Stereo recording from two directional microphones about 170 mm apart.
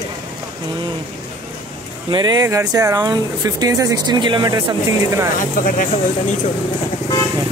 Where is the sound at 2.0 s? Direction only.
25° right (ahead or behind).